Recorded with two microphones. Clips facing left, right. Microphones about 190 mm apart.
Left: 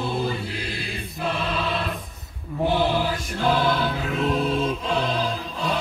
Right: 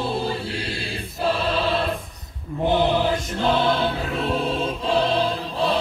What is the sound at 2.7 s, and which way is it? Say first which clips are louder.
Music: right 3 dB; 20° right (ahead or behind).